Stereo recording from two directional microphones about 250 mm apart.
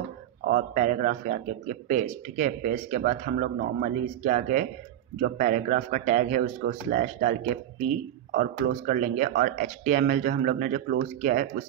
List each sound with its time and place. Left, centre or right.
0.5 s speech: right